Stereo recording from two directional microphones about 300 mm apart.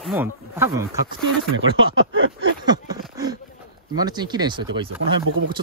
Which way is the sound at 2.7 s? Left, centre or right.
Centre.